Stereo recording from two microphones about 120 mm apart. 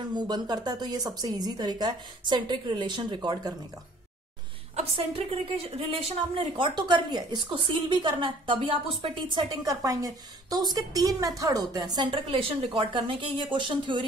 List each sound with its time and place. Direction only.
0.1 s a woman's voice: 35° right (ahead or behind)
4.7 s a woman's voice: 55° right (ahead or behind)
6.5 s a woman's voice: 40° right (ahead or behind)
9.7 s a woman's voice: 30° right (ahead or behind)